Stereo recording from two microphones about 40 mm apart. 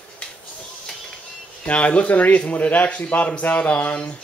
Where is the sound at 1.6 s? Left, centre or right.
Left.